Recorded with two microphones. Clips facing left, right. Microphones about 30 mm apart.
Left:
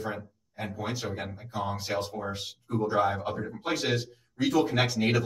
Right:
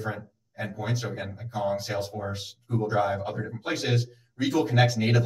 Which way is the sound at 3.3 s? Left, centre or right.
Centre.